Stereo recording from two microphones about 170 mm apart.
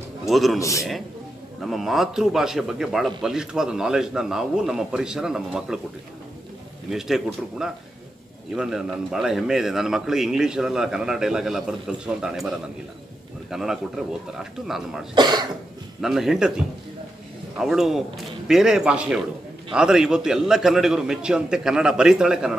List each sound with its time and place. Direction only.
0.3 s a man's voice: centre (ahead or behind)
0.6 s a man's voice: 20° left (ahead or behind)
1.6 s a man's voice: centre (ahead or behind)
6.9 s a man's voice: centre (ahead or behind)
15.1 s cough: 25° right (ahead or behind)
16.0 s a man's voice: centre (ahead or behind)